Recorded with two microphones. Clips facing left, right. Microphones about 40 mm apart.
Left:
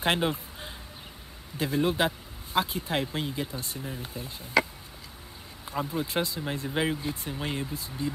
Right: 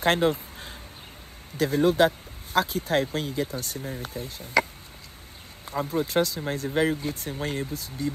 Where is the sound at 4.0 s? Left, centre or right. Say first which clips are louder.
Right 3 dB; right.